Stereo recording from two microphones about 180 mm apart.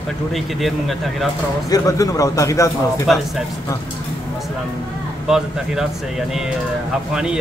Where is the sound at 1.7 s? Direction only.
20° left (ahead or behind).